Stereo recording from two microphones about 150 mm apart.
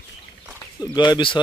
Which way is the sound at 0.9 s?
30° left (ahead or behind).